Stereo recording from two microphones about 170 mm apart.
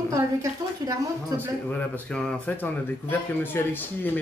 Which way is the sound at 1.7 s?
10° left (ahead or behind).